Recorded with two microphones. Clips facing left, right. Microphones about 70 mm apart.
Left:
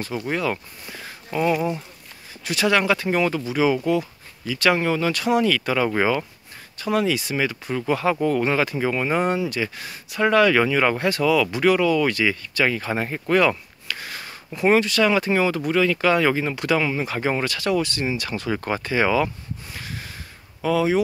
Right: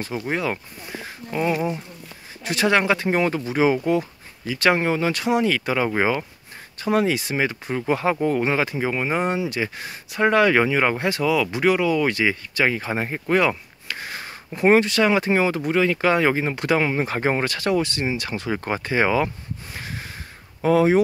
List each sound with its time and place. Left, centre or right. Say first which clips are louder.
0.3 s speech: left 1 dB; right
2.4 s speech: even; right
6.8 s speech: right 1 dB; right